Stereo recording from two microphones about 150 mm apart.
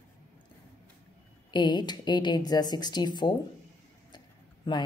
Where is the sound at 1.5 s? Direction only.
30° left (ahead or behind).